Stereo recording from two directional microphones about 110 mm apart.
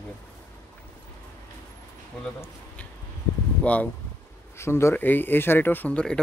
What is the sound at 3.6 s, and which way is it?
Speech, 10° left (ahead or behind).